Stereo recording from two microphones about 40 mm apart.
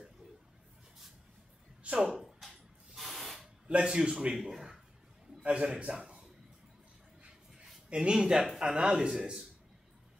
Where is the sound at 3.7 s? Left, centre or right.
Right.